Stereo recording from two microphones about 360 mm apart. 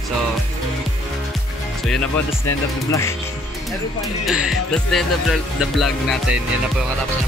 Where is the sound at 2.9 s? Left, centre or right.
Centre.